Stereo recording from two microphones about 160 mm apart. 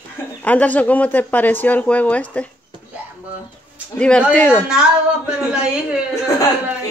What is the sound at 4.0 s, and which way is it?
Speech, 5° left (ahead or behind).